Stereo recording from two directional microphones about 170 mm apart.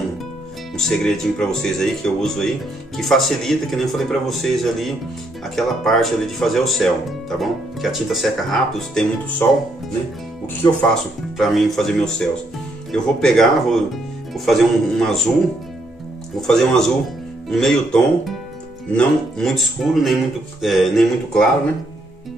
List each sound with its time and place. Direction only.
0.7 s speech: 5° left (ahead or behind)
10.6 s speech: 25° left (ahead or behind)
11.3 s speech: centre (ahead or behind)
16.3 s speech: 5° left (ahead or behind)